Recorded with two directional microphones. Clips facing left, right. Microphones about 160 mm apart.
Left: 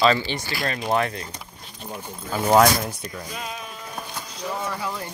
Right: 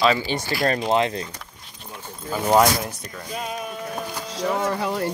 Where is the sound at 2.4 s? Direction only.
Centre (ahead or behind).